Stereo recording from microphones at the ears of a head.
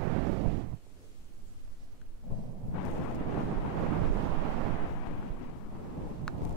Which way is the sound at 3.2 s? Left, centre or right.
Right.